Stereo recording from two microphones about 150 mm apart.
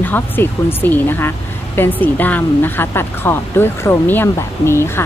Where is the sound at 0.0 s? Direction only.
15° left (ahead or behind).